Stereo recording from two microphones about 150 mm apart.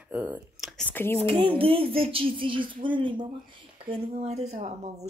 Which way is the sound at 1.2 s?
35° right (ahead or behind).